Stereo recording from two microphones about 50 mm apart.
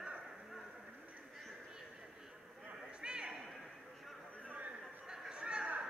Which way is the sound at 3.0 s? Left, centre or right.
Centre.